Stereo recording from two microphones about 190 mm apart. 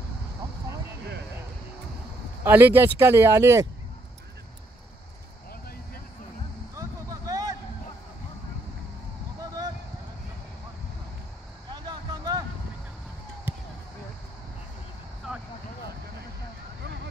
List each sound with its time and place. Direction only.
2.4 s speech: 10° right (ahead or behind)
6.7 s vehicle: 15° right (ahead or behind)
9.4 s a sound: 20° right (ahead or behind)
11.7 s vehicle: 20° right (ahead or behind)
13.5 s basketball bounce: 10° right (ahead or behind)